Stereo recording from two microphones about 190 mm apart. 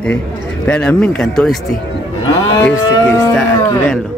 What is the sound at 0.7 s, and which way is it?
Speech, 5° left (ahead or behind).